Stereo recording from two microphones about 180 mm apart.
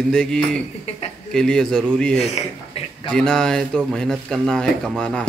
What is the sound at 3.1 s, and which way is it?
Speech, 5° left (ahead or behind).